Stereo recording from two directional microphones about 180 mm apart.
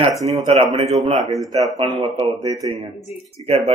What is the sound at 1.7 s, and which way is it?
A man's voice, 30° right (ahead or behind).